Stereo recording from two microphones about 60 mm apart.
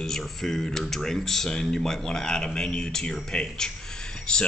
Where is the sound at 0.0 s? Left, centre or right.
Centre.